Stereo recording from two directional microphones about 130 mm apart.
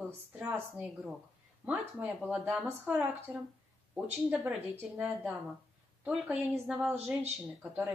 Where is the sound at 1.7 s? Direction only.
10° right (ahead or behind).